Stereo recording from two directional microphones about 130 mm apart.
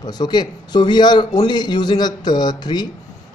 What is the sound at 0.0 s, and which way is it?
Speech, 35° left (ahead or behind).